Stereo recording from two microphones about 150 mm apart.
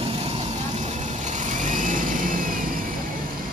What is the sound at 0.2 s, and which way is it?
Vehicle, 45° right (ahead or behind).